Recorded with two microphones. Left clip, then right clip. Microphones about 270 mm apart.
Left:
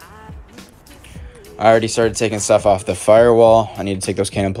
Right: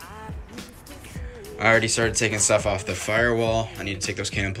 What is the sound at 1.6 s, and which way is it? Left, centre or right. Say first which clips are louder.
Speech: left 7 dB; centre.